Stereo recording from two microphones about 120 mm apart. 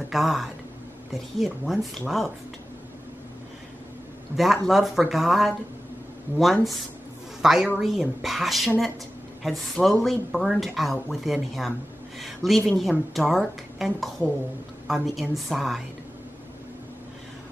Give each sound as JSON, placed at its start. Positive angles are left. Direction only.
{"t": 0.1, "sound": "speech", "side_deg": 0}
{"t": 4.4, "sound": "speech", "side_deg": 0}